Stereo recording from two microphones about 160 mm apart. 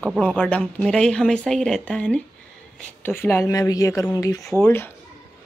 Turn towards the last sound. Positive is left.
turn(degrees=15)  # may be behind; listen again after turning